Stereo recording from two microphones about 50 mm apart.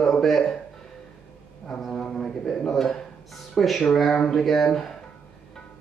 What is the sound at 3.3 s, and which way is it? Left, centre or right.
Speech, centre.